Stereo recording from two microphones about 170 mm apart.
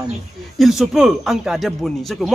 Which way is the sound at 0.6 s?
Centre (ahead or behind).